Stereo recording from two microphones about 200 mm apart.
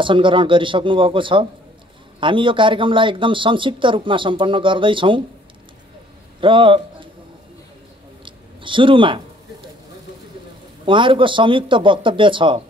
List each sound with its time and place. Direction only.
0.0 s speech: 25° right (ahead or behind)
6.4 s a man's voice: 25° right (ahead or behind)
8.3 s a sound: 25° right (ahead or behind)
10.9 s speech: 25° right (ahead or behind)